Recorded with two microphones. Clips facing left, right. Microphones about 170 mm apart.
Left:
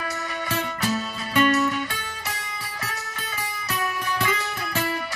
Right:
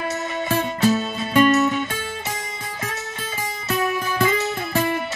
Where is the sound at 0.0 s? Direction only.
25° right (ahead or behind).